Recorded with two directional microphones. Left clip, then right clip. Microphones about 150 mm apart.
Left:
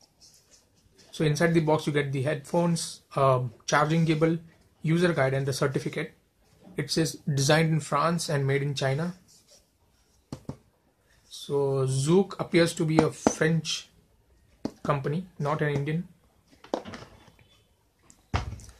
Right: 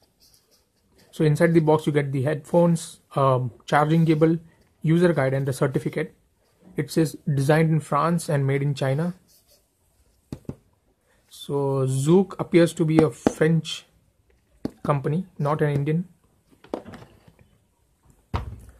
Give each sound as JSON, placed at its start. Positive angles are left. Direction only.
{"t": 1.1, "sound": "speech", "side_deg": -55}
{"t": 11.2, "sound": "speech", "side_deg": -50}